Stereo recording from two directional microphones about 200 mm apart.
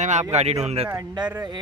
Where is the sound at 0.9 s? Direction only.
20° right (ahead or behind).